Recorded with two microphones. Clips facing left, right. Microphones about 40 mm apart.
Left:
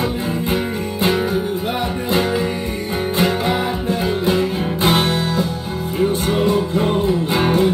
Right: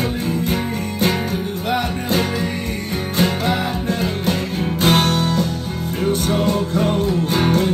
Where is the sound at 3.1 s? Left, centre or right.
Left.